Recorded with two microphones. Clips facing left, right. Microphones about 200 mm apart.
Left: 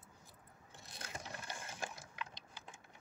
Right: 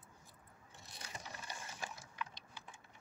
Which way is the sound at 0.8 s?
50° left (ahead or behind).